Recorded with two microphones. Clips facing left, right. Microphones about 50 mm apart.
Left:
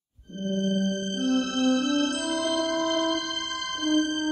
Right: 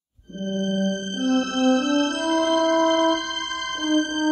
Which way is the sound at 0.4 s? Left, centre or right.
Right.